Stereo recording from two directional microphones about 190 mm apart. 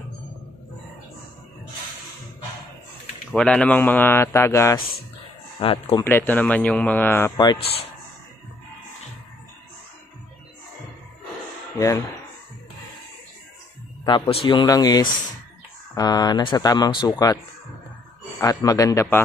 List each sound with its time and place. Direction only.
3.3 s speech: 5° left (ahead or behind)
5.6 s speech: 30° left (ahead or behind)
6.0 s speech: 10° left (ahead or behind); by 7.8 s 30° left (ahead or behind)
14.0 s speech: 25° left (ahead or behind)
18.4 s speech: 20° left (ahead or behind)